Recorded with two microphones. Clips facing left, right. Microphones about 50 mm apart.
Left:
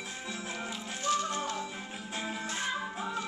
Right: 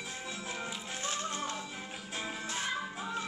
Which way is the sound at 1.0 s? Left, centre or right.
Right.